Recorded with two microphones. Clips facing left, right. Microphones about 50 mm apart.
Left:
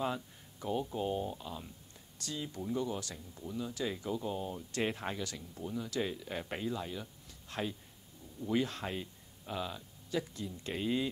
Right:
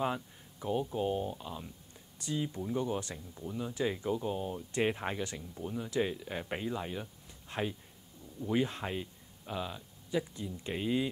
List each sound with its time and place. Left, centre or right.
0.0 s a sound: right
0.7 s speech: centre
2.1 s speech: centre
8.9 s speech: centre